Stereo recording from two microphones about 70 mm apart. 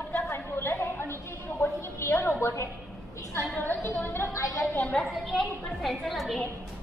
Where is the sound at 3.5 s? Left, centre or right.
Left.